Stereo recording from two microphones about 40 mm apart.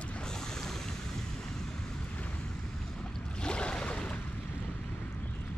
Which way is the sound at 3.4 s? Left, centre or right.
Left.